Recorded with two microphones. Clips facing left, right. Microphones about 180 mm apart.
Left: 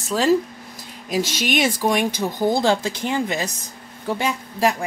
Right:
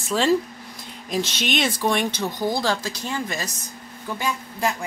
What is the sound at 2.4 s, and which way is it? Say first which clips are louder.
Speech: left 6 dB; 20° left (ahead or behind).